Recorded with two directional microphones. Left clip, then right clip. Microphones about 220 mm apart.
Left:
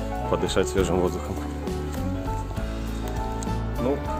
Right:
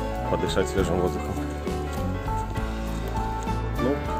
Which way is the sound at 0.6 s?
15° left (ahead or behind).